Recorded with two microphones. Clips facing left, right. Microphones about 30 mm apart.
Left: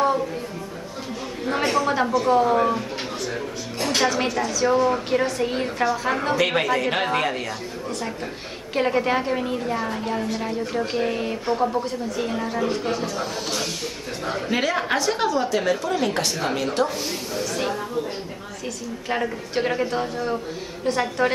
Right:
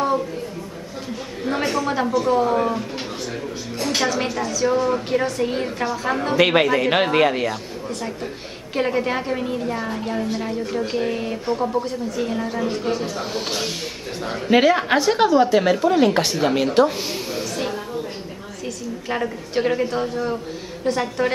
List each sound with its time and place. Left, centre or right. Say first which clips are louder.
1.5 s a woman's voice: left 1 dB; centre
3.8 s a woman's voice: even; centre
6.3 s a woman's voice: right 7 dB; right
8.7 s a woman's voice: even; centre
13.0 s a woman's voice: right 1 dB; centre
19.0 s a woman's voice: even; centre